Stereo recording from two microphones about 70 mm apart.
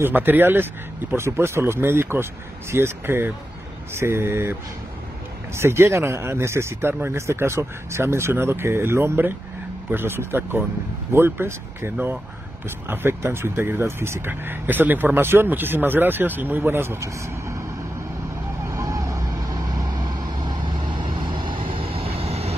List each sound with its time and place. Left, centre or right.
0.0 s speech: right
17.0 s speech: right
18.7 s vehicle: right